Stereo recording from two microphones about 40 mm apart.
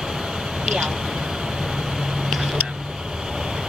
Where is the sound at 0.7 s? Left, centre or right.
Centre.